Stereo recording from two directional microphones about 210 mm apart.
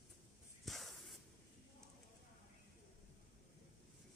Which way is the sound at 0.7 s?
Centre (ahead or behind).